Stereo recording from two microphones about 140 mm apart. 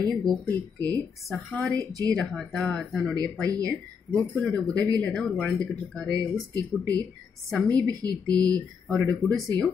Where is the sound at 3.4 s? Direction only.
25° right (ahead or behind).